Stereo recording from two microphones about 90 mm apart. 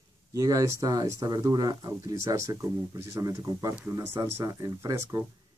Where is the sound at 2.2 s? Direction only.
35° right (ahead or behind).